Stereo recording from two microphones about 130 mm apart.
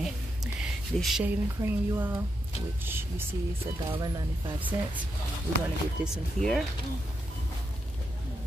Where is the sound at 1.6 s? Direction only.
15° right (ahead or behind).